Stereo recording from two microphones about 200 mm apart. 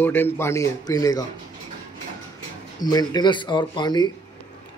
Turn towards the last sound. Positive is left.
turn(degrees=20)  # may be behind; listen again after turning